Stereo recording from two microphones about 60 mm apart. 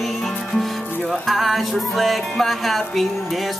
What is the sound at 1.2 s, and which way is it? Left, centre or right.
Music, centre.